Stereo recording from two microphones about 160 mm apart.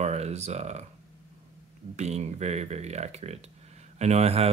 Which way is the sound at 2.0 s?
45° right (ahead or behind).